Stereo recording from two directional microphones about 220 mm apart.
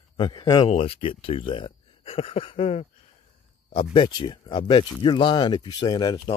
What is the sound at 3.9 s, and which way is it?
Speech, 20° left (ahead or behind).